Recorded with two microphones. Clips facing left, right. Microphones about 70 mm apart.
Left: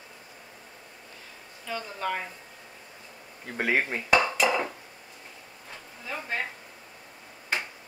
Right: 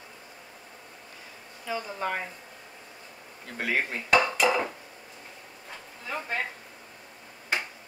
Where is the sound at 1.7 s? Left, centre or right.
Centre.